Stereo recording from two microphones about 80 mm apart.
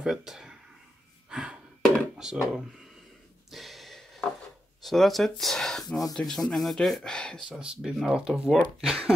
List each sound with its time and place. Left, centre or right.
0.0 s speech: centre
1.3 s gasp: centre
2.1 s speech: centre
3.4 s a sound: centre
4.8 s speech: centre
7.6 s speech: centre